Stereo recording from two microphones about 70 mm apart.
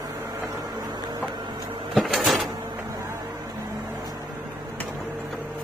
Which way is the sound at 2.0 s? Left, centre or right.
Centre.